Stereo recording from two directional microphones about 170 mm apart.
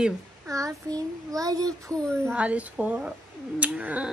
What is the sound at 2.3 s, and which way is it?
Speech, 5° right (ahead or behind).